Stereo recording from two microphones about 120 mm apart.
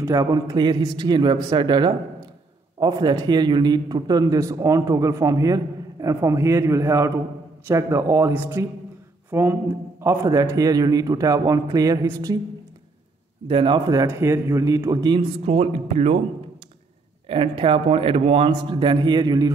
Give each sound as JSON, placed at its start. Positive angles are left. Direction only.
{"t": 0.0, "sound": "a man's voice", "side_deg": -30}
{"t": 13.5, "sound": "a man's voice", "side_deg": -45}
{"t": 15.1, "sound": "speech", "side_deg": -55}
{"t": 17.3, "sound": "speech", "side_deg": -50}
{"t": 18.5, "sound": "a man's voice", "side_deg": -40}